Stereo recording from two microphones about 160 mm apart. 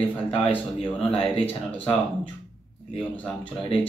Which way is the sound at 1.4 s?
10° left (ahead or behind).